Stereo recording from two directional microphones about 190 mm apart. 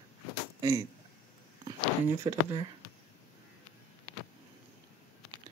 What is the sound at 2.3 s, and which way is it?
Speech, 25° right (ahead or behind).